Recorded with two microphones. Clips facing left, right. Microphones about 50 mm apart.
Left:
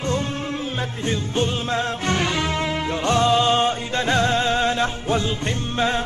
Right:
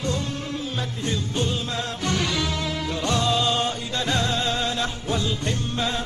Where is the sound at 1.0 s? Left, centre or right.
Left.